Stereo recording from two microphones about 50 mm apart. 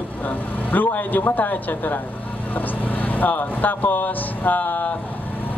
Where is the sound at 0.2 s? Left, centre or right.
Left.